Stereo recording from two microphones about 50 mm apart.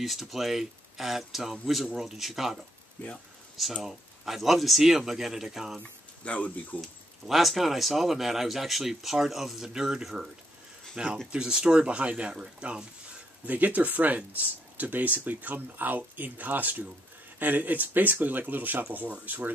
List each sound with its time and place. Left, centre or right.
0.0 s speech: centre
3.0 s speech: left
3.8 s speech: centre
5.8 s speech: left
6.8 s speech: centre
13.5 s speech: right